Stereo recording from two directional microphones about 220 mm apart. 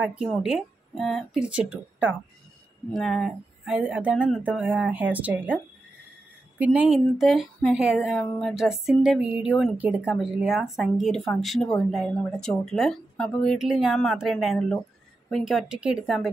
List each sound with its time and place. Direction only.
0.0 s speech: 5° right (ahead or behind)
6.6 s speech: 5° right (ahead or behind)